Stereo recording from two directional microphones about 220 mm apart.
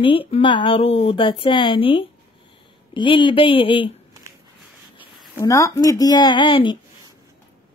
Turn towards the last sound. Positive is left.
turn(degrees=20)  # may be behind; listen again after turning